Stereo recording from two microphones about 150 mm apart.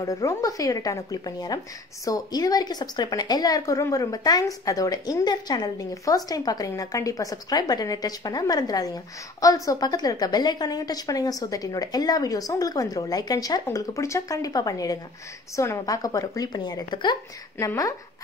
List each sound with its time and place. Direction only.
0.0 s speech: 20° left (ahead or behind)